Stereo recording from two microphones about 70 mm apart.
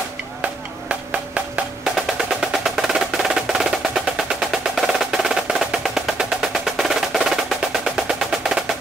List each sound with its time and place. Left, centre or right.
0.4 s music: centre
2.0 s percussion: centre